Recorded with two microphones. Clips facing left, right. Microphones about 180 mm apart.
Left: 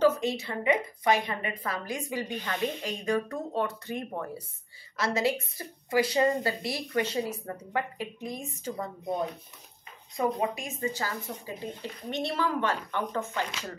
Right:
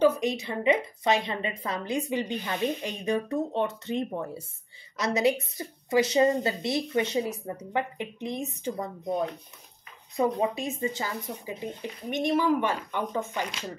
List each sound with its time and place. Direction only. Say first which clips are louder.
0.0 s a woman's voice: right 1 dB; 15° right (ahead or behind)
10.1 s speech: right 3 dB; 25° right (ahead or behind)